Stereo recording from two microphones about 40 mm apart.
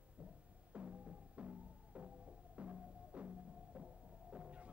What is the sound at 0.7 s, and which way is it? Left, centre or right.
Music, right.